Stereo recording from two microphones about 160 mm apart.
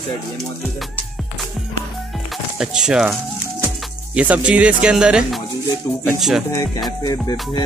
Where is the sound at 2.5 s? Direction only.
5° right (ahead or behind).